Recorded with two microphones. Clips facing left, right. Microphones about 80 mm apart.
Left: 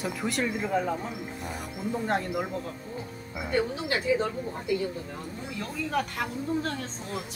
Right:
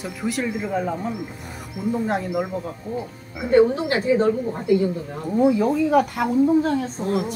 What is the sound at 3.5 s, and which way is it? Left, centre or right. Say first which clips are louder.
Speech: right 12 dB; right.